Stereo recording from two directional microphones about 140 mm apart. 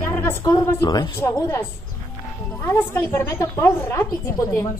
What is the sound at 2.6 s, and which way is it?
A woman's voice, 15° left (ahead or behind).